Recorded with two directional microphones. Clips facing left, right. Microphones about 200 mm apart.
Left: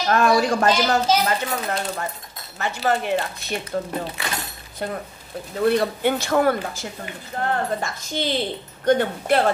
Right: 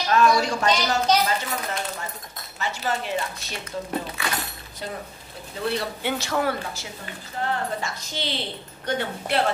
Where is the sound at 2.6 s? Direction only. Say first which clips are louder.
Left 5 dB; 55° left (ahead or behind).